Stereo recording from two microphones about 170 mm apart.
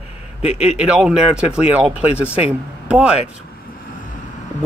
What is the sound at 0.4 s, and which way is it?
Speech, 40° left (ahead or behind).